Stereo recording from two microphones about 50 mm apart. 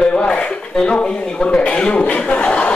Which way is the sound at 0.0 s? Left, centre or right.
Left.